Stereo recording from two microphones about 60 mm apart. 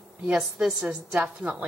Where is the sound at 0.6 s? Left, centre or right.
Centre.